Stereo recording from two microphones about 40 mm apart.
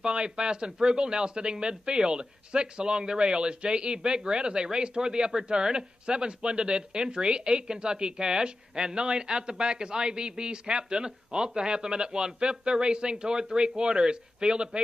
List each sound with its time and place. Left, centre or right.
0.0 s speech: right